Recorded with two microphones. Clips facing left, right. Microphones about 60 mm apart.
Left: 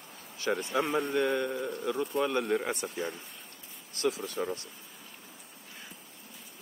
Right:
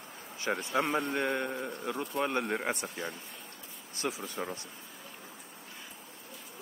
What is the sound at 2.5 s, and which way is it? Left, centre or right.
Speech, right.